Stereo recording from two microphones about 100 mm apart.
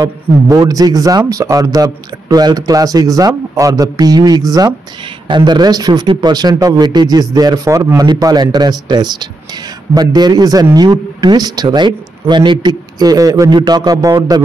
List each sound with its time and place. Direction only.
0.5 s speech: 40° right (ahead or behind)